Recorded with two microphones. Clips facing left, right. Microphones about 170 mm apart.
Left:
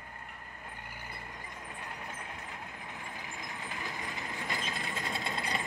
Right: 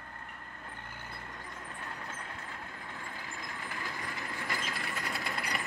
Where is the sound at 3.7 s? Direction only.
20° left (ahead or behind).